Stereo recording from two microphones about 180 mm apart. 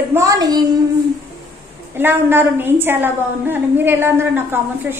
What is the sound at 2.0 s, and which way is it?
A woman's voice, 10° right (ahead or behind).